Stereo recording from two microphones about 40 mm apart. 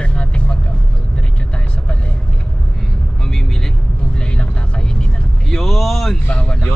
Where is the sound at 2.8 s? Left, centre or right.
Centre.